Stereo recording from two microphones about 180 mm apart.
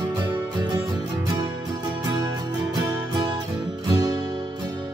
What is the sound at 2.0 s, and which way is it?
Music, 20° right (ahead or behind).